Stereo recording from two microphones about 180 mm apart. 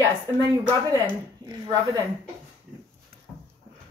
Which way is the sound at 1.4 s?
20° right (ahead or behind).